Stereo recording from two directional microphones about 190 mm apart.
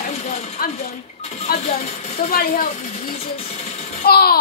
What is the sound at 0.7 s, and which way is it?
Speech, 35° left (ahead or behind).